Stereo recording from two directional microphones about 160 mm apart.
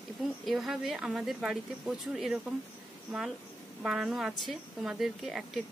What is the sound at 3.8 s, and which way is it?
Speech, 5° right (ahead or behind).